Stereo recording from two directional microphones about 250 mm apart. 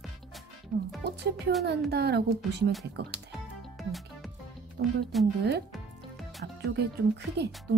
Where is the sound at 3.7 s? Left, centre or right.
Centre.